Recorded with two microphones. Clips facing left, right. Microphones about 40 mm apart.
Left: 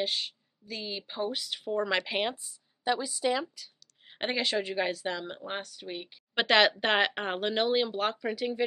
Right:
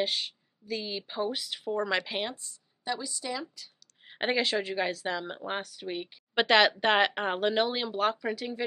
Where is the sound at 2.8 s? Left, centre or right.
Left.